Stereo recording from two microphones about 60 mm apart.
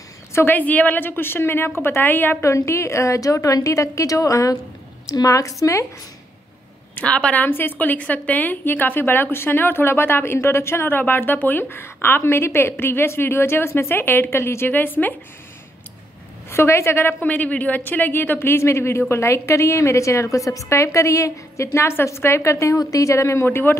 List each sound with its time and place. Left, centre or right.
0.5 s a woman's voice: left
2.4 s a woman's voice: left
7.1 s a woman's voice: left
7.4 s a woman's voice: left
14.7 s a woman's voice: left
16.4 s a woman's voice: left
17.2 s speech: left
22.8 s a woman's voice: left
23.4 s a woman's voice: left